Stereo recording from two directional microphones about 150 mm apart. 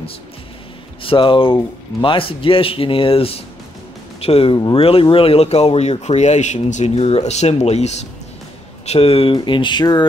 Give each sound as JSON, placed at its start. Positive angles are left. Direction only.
{"t": 1.0, "sound": "speech", "side_deg": 35}